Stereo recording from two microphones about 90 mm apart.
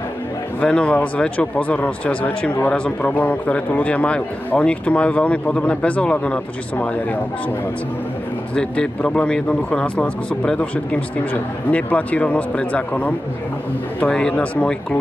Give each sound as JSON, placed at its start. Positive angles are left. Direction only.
{"t": 0.6, "sound": "a man's voice", "side_deg": 10}
{"t": 8.5, "sound": "a man's voice", "side_deg": 10}